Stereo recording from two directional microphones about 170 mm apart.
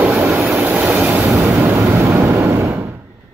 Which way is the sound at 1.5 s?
5° right (ahead or behind).